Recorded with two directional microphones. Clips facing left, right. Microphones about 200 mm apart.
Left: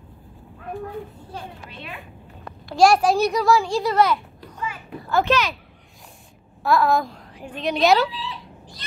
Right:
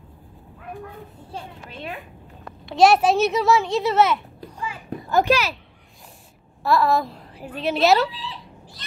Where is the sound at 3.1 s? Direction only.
25° right (ahead or behind).